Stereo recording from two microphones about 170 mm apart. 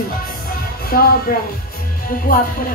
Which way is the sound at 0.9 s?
60° left (ahead or behind).